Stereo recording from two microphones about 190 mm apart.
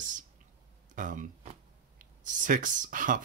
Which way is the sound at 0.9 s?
45° right (ahead or behind).